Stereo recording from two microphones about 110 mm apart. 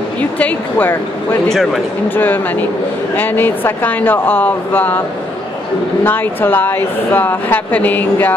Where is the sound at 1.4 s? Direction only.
5° left (ahead or behind).